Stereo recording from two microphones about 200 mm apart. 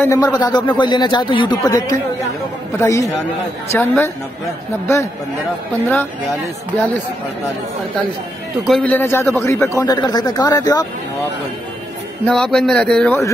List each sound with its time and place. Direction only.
0.0 s a man's voice: 15° left (ahead or behind)
8.6 s a man's voice: 5° left (ahead or behind)
12.3 s speech: centre (ahead or behind)